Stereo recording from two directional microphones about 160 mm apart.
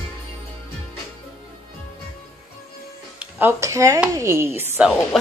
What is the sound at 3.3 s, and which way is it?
Speech, 15° right (ahead or behind).